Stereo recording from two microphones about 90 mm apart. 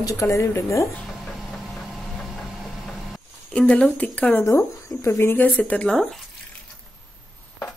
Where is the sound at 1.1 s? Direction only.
Centre (ahead or behind).